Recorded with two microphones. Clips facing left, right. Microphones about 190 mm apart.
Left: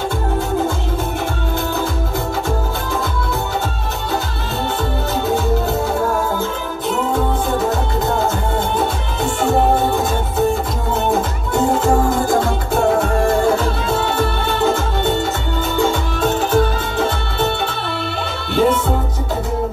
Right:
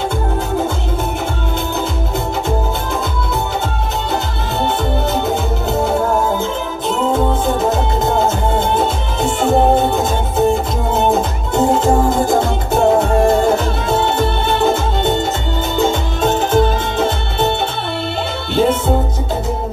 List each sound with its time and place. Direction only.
8.5 s music: 20° right (ahead or behind)